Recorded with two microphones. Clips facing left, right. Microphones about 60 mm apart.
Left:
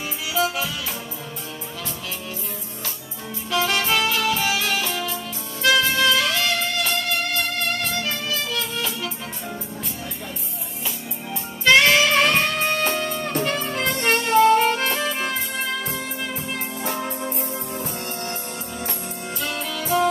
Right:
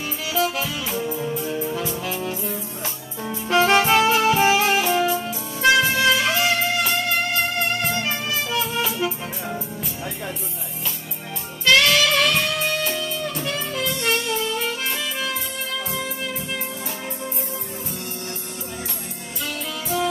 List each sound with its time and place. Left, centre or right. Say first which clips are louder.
0.3 s music: even; centre
1.0 s music: right 9 dB; centre
3.4 s saxophone: right 5 dB; right
5.8 s music: right 1 dB; centre
11.6 s music: left 2 dB; left